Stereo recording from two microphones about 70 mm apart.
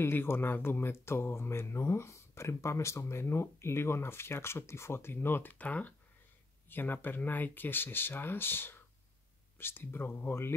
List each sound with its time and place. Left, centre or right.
0.0 s speech: left